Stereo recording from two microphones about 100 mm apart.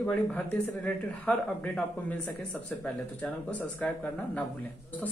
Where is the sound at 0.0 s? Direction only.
15° left (ahead or behind).